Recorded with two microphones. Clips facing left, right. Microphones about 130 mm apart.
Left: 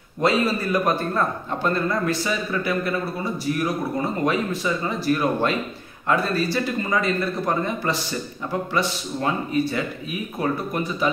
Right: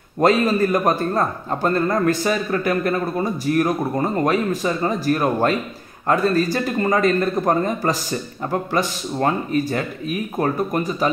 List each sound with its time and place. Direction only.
0.2 s a man's voice: 45° right (ahead or behind)